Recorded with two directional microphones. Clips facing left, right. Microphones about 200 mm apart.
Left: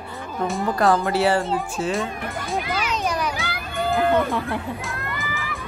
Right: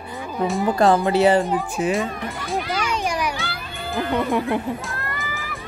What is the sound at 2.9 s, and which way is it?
Children playing, 10° right (ahead or behind).